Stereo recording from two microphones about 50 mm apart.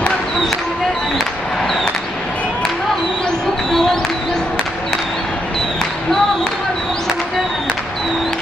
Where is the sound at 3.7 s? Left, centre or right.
Centre.